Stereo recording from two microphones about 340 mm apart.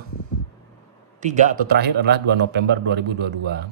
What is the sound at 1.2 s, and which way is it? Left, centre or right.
Speech, right.